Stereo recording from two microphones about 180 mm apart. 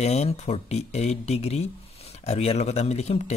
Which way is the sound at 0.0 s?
35° left (ahead or behind).